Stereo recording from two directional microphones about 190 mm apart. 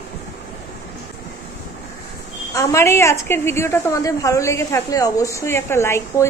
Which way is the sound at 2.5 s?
15° left (ahead or behind).